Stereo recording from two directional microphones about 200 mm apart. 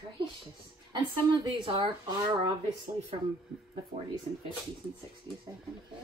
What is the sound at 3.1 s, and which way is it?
Speech, 30° right (ahead or behind).